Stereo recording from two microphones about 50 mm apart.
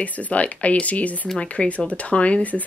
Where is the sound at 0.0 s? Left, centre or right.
Left.